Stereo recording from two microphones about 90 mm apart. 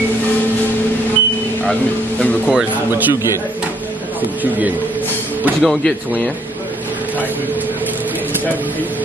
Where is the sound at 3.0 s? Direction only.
30° right (ahead or behind).